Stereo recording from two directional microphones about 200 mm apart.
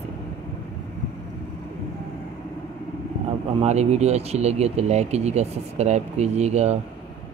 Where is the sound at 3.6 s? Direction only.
35° right (ahead or behind).